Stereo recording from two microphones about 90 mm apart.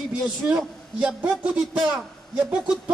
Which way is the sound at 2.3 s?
15° right (ahead or behind).